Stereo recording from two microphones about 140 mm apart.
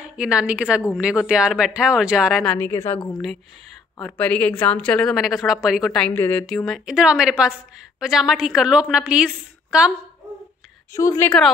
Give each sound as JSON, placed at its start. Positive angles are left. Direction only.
{"t": 0.0, "sound": "a woman's voice", "side_deg": -5}
{"t": 2.4, "sound": "a woman's voice", "side_deg": 15}
{"t": 4.0, "sound": "a woman's voice", "side_deg": 10}
{"t": 6.4, "sound": "a woman's voice", "side_deg": 0}
{"t": 11.0, "sound": "a woman's voice", "side_deg": 25}
{"t": 11.2, "sound": "a woman's voice", "side_deg": 5}